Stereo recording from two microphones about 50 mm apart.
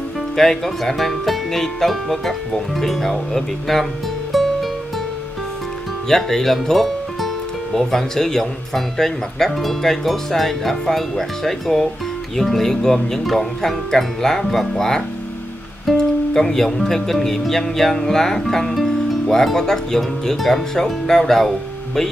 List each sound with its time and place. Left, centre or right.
0.4 s speech: centre
4.3 s music: centre
6.0 s speech: centre